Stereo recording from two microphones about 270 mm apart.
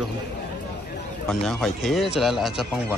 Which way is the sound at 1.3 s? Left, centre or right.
Centre.